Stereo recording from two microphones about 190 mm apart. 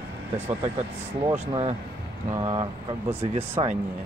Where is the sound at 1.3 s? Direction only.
30° right (ahead or behind).